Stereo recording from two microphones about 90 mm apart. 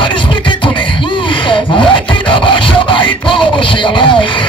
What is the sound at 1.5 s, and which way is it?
Music, 70° left (ahead or behind).